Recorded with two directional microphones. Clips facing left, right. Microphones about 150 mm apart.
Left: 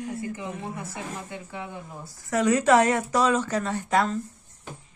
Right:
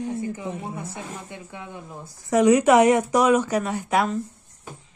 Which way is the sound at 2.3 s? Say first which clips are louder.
Right 4 dB; 15° right (ahead or behind).